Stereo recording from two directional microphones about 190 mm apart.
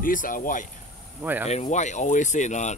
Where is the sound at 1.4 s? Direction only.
35° left (ahead or behind).